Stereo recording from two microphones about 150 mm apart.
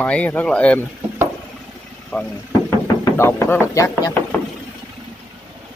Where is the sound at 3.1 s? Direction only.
15° left (ahead or behind).